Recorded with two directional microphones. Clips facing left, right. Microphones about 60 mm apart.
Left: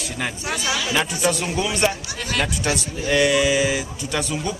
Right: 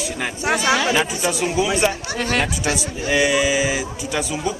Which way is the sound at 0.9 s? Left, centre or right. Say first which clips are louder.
Right 1 dB; centre.